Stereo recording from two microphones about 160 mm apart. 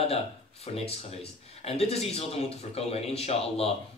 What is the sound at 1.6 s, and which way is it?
Speech, 40° left (ahead or behind).